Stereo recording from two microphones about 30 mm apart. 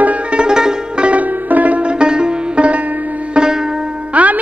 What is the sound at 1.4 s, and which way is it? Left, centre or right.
Music, right.